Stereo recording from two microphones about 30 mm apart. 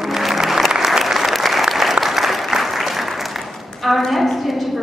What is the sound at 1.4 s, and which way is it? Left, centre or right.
Applause, centre.